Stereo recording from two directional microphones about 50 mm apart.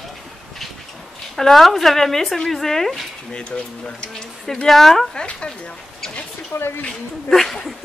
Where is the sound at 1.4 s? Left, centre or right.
Centre.